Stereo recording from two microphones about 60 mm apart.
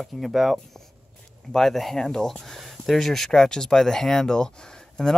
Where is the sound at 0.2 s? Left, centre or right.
Centre.